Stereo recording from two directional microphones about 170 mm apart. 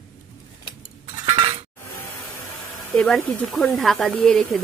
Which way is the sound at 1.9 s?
15° left (ahead or behind).